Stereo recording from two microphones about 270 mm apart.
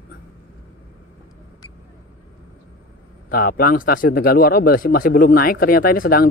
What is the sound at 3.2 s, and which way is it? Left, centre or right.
Speech, left.